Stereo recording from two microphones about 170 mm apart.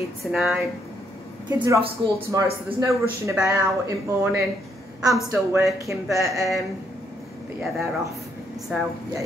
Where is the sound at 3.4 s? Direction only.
20° right (ahead or behind).